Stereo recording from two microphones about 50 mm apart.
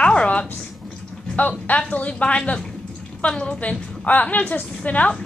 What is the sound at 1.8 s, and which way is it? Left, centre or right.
Speech, left.